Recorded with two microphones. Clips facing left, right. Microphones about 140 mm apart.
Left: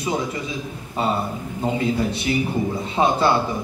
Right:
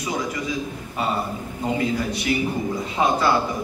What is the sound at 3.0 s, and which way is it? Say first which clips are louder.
Speech: left 2 dB; 30° left (ahead or behind).